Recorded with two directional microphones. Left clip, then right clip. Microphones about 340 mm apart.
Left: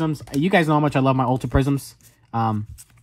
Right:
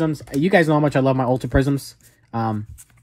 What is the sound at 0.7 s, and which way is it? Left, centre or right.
Speech, centre.